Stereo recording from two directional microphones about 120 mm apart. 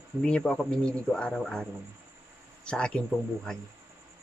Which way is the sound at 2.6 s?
10° left (ahead or behind).